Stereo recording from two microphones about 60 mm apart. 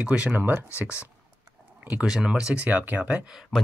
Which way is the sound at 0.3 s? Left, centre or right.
Right.